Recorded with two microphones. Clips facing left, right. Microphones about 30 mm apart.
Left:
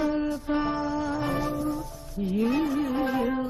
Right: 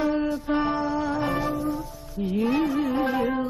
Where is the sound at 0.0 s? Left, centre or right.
Centre.